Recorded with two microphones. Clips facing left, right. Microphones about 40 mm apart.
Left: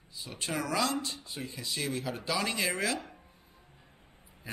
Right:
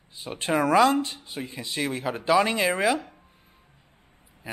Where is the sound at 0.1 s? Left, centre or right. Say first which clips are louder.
Right 10 dB; right.